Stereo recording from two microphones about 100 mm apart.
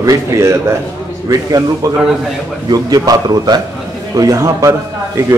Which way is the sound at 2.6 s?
40° right (ahead or behind).